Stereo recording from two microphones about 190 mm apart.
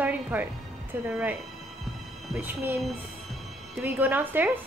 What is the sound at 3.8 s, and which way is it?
Speech, 10° right (ahead or behind).